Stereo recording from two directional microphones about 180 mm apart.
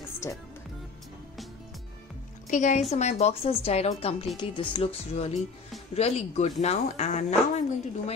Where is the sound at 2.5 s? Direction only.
45° left (ahead or behind).